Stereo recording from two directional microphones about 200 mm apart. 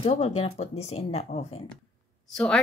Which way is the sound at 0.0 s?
30° left (ahead or behind).